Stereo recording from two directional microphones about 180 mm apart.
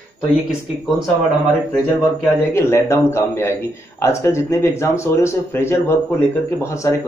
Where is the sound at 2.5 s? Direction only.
15° left (ahead or behind).